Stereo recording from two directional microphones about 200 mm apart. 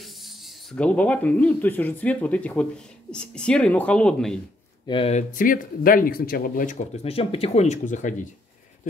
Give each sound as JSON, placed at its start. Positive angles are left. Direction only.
{"t": 0.0, "sound": "speech", "side_deg": 0}
{"t": 4.8, "sound": "speech", "side_deg": 30}